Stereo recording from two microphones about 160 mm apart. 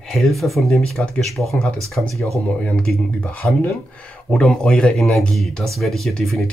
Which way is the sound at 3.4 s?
5° left (ahead or behind).